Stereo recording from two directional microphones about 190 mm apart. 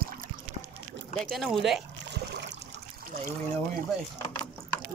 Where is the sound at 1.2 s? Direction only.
Centre (ahead or behind).